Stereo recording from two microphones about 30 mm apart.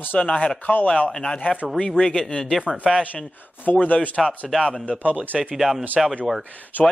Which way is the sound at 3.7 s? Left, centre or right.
Left.